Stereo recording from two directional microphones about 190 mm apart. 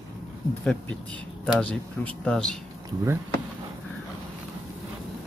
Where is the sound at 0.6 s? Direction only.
5° left (ahead or behind).